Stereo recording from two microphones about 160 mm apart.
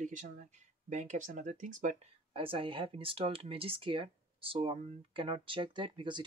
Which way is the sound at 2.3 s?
35° right (ahead or behind).